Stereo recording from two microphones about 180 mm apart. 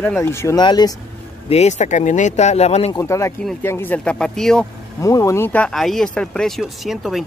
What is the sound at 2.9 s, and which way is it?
Speech, 15° left (ahead or behind).